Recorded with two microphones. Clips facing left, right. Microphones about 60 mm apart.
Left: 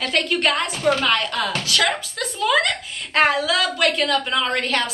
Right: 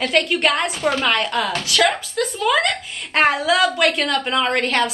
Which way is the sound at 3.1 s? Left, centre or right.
Right.